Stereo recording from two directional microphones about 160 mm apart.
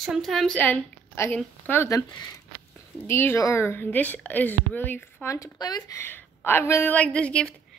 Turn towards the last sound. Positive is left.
turn(degrees=5)  # may be behind; listen again after turning